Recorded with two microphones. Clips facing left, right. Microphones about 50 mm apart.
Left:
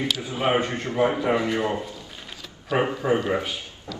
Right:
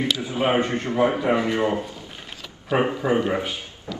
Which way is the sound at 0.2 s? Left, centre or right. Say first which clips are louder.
Right 1 dB; right.